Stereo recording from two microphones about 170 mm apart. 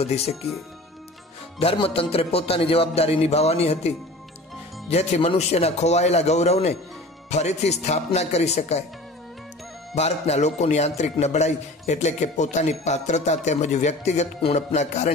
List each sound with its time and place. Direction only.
0.0 s speech: 35° left (ahead or behind)
1.6 s speech: 35° left (ahead or behind)
9.9 s speech: 40° left (ahead or behind)